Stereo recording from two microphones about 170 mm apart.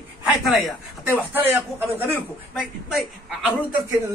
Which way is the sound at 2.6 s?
Centre (ahead or behind).